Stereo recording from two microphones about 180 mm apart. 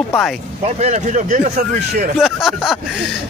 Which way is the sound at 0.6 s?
40° right (ahead or behind).